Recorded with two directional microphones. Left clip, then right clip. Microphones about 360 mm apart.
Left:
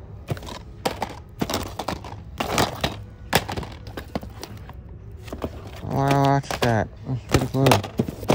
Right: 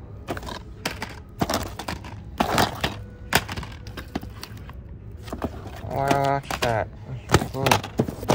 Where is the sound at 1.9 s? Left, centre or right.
Left.